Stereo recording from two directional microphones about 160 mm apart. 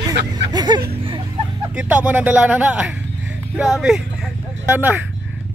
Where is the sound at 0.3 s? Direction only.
25° right (ahead or behind).